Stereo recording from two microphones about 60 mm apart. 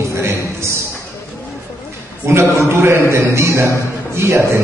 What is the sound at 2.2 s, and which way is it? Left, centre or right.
A man's voice, right.